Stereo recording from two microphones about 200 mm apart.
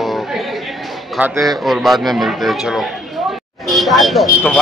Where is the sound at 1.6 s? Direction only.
Centre (ahead or behind).